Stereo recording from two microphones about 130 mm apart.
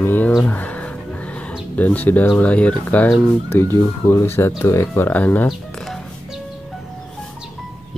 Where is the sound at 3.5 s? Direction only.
20° left (ahead or behind).